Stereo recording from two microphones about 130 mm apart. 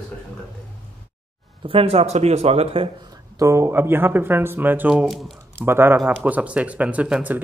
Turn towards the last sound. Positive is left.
turn(degrees=-10)  # may be behind; listen again after turning